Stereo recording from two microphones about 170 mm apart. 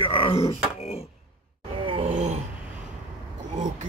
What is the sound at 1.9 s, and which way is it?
Groan, 45° right (ahead or behind).